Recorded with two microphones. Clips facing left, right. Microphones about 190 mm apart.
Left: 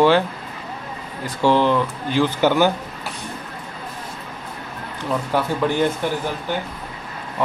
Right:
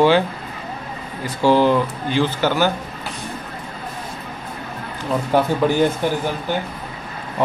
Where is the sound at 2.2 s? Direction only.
15° left (ahead or behind).